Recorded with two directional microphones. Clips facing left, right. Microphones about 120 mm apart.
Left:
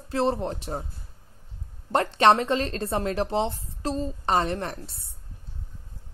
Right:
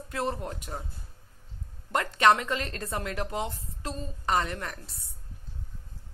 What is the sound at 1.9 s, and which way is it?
A woman's voice, 30° left (ahead or behind).